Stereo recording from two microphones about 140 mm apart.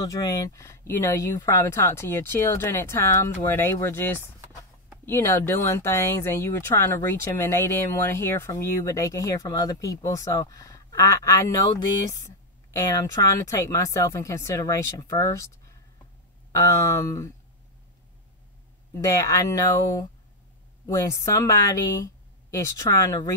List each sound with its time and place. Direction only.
0.0 s speech: 25° left (ahead or behind)
16.5 s speech: 20° left (ahead or behind)
18.9 s speech: 25° left (ahead or behind)